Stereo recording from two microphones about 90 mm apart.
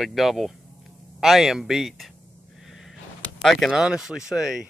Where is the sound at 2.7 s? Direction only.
Centre (ahead or behind).